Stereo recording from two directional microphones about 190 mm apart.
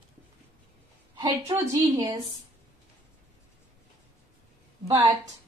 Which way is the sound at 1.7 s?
20° right (ahead or behind).